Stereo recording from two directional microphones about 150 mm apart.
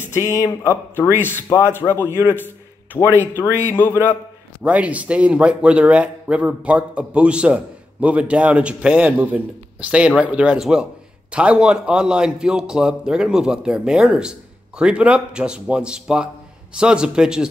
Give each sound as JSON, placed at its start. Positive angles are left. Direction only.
{"t": 0.1, "sound": "a man's voice", "side_deg": 20}
{"t": 3.2, "sound": "a man's voice", "side_deg": 15}
{"t": 4.6, "sound": "a man's voice", "side_deg": -10}